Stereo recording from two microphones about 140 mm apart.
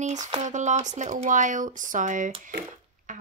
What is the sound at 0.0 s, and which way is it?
Speech, 60° right (ahead or behind).